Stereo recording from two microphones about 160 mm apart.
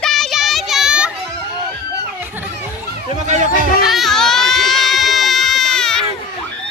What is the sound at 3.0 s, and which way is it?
Chatter, 45° right (ahead or behind).